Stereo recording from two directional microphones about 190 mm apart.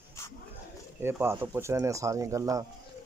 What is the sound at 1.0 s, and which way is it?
Speech, 10° right (ahead or behind).